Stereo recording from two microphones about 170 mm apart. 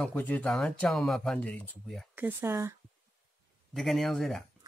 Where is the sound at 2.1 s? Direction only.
10° right (ahead or behind).